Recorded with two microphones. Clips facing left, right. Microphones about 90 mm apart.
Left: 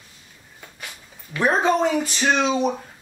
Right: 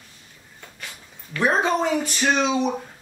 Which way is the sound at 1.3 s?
Centre (ahead or behind).